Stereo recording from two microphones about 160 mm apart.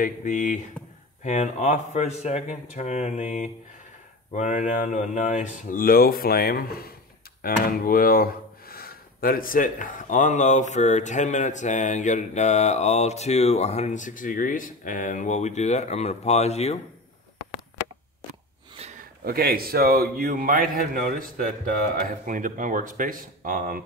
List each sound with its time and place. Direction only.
0.0 s speech: 55° left (ahead or behind)
18.8 s a sound: 45° right (ahead or behind)
19.2 s a man's voice: 70° right (ahead or behind)